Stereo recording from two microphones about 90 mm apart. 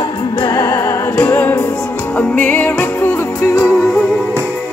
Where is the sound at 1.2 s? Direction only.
20° left (ahead or behind).